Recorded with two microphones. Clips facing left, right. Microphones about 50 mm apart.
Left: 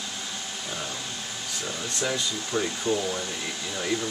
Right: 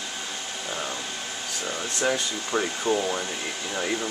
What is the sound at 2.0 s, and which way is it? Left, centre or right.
Speech, right.